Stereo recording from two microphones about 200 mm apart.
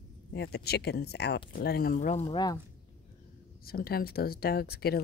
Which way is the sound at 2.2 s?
20° left (ahead or behind).